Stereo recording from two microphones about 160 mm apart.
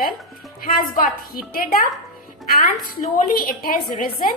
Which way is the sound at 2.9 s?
60° left (ahead or behind).